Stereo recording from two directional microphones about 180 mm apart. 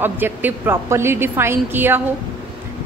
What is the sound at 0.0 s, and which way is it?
A woman's voice, 10° right (ahead or behind).